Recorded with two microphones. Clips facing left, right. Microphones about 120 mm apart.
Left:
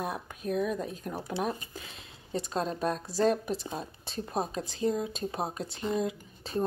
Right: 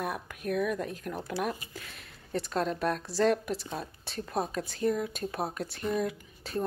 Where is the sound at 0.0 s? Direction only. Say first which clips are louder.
Even; 25° left (ahead or behind).